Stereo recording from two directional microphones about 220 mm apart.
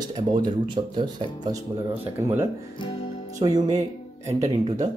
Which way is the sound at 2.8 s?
25° left (ahead or behind).